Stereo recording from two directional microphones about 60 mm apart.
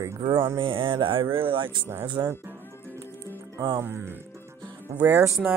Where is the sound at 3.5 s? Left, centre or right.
Right.